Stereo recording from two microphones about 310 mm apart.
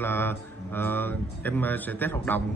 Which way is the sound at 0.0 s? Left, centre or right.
Centre.